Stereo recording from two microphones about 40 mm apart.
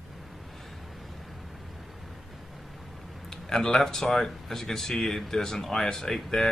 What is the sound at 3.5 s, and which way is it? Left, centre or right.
Speech, centre.